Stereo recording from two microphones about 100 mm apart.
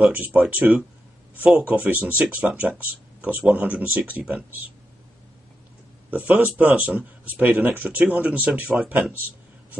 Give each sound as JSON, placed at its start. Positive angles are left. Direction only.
{"t": 0.1, "sound": "speech", "side_deg": -20}
{"t": 6.0, "sound": "speech", "side_deg": -15}